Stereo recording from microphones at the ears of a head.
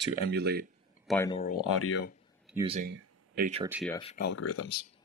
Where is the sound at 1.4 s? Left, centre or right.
Left.